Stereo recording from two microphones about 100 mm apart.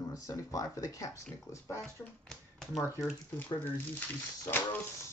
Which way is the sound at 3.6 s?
20° left (ahead or behind).